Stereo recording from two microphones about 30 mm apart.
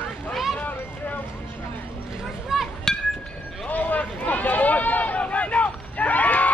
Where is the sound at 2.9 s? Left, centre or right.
Centre.